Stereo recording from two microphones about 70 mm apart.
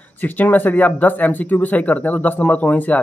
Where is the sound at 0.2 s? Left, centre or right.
Left.